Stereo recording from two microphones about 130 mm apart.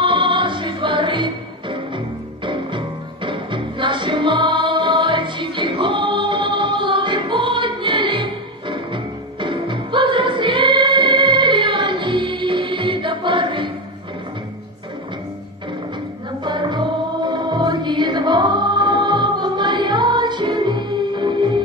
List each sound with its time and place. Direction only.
0.0 s music: 40° right (ahead or behind)
16.4 s music: 35° right (ahead or behind)